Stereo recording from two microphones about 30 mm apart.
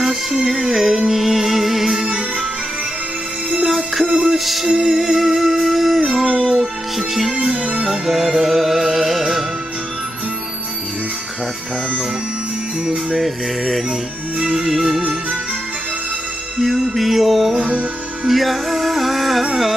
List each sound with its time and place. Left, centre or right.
0.0 s music: centre
3.6 s music: centre
7.3 s music: right
13.2 s music: centre
14.5 s music: centre
16.5 s music: centre